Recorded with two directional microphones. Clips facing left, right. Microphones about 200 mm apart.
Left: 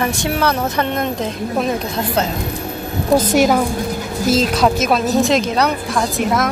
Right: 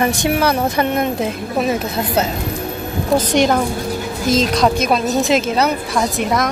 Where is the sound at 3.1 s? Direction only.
5° left (ahead or behind).